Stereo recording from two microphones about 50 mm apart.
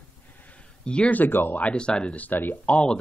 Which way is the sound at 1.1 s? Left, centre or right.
Left.